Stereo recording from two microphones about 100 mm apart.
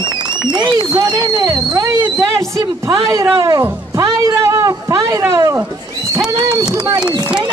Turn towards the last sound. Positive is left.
turn(degrees=-30)  # may be behind; listen again after turning